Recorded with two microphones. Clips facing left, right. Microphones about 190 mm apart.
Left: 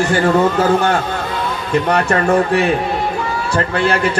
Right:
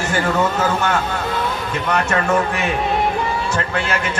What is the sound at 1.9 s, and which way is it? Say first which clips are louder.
A man's voice: left 2 dB; 35° left (ahead or behind).